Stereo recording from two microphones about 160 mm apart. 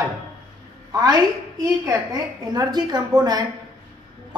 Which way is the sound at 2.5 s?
25° right (ahead or behind).